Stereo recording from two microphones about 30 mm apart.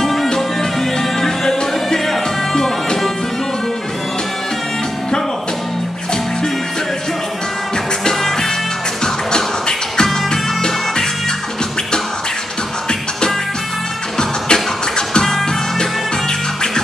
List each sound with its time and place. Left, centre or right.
0.0 s music: centre
2.5 s music: left
8.0 s music: centre
9.0 s music: left
14.1 s music: left